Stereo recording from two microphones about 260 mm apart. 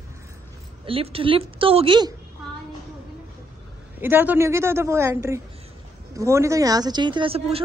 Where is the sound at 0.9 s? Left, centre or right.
Right.